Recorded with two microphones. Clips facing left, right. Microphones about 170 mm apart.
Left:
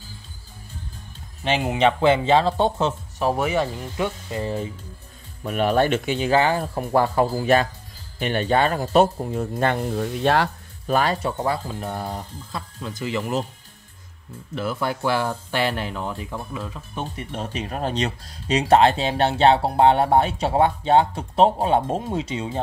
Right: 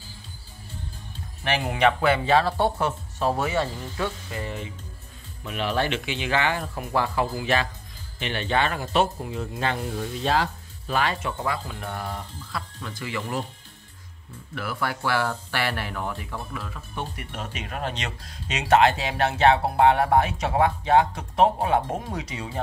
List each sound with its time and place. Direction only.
1.4 s speech: 20° left (ahead or behind)
4.4 s speech: 35° left (ahead or behind)
5.4 s speech: 45° left (ahead or behind); by 10.5 s 60° left (ahead or behind)
10.9 s speech: 40° left (ahead or behind); by 13.5 s 20° left (ahead or behind)
14.5 s speech: 25° left (ahead or behind)